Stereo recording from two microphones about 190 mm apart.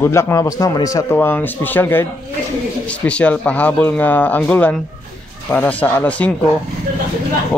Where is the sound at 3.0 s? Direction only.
5° left (ahead or behind).